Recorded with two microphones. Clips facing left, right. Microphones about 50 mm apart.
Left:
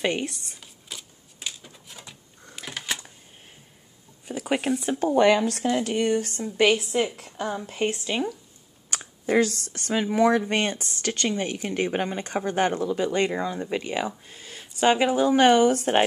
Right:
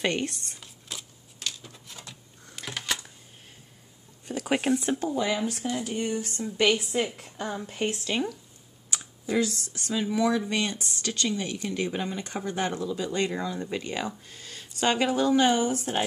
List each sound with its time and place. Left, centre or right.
0.0 s a sound: centre
4.3 s speech: centre
5.1 s speech: left
6.5 s speech: left
7.2 s a woman's voice: left
7.9 s speech: centre
8.9 s speech: left; by 15.3 s centre
15.3 s speech: left
15.6 s speech: left